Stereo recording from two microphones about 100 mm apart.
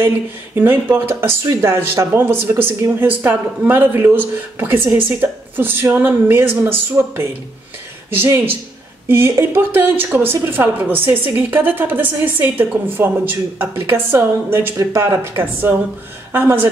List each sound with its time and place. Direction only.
0.6 s a woman's voice: 20° right (ahead or behind)